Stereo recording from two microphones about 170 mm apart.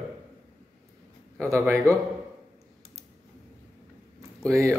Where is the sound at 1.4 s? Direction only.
15° right (ahead or behind).